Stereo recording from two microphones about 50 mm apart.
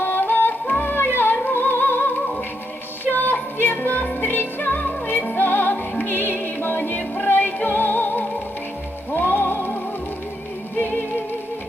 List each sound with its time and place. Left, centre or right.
0.0 s yodeling: left
0.9 s music: left
3.1 s music: left
10.8 s music: left